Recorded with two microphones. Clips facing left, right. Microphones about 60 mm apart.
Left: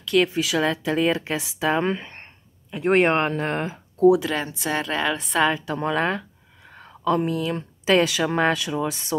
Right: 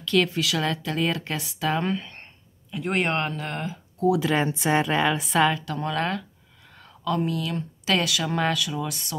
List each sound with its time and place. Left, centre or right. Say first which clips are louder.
0.0 s speech: left 2 dB; centre
0.3 s a woman's voice: left 3 dB; centre
1.9 s speech: left 2 dB; left
4.4 s speech: right 4 dB; right
4.8 s a woman's voice: right 1 dB; centre
5.5 s a woman's voice: left 3 dB; left